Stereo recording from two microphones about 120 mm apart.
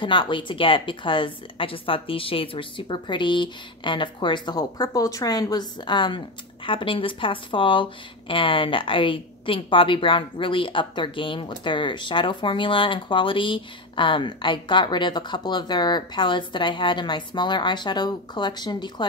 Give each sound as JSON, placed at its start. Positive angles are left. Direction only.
{"t": 0.0, "sound": "a woman's voice", "side_deg": 40}